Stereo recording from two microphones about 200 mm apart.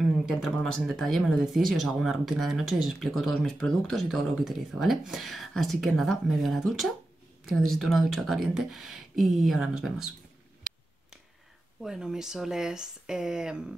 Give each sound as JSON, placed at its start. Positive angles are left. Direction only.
{"t": 0.0, "sound": "speech", "side_deg": 0}
{"t": 11.8, "sound": "speech", "side_deg": 0}